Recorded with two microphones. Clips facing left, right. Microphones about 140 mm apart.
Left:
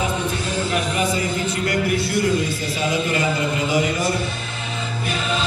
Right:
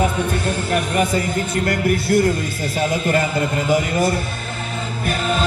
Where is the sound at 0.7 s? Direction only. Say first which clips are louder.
Right 4 dB; 55° right (ahead or behind).